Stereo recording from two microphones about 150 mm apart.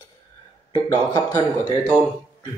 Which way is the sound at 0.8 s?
30° left (ahead or behind).